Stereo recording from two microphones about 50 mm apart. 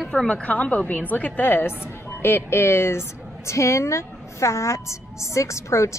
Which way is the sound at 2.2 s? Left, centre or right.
Left.